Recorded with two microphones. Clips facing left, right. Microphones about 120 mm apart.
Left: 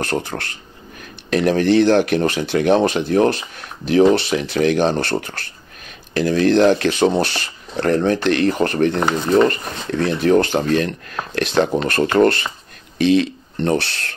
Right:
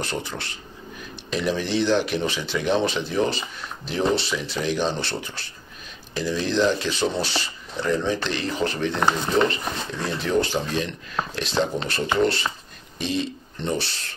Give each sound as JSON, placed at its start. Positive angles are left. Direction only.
{"t": 0.0, "sound": "speech", "side_deg": 55}
{"t": 12.9, "sound": "speech", "side_deg": 75}